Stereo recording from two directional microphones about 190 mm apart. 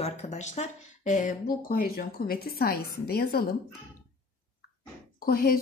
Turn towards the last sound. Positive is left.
turn(degrees=50)  # may be behind; listen again after turning